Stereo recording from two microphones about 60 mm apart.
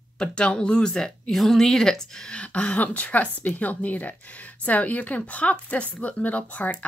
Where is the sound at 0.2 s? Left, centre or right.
Centre.